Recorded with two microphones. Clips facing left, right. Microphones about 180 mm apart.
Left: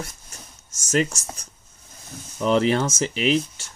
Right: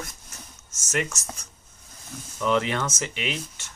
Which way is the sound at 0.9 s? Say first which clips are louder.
Left 6 dB; 30° left (ahead or behind).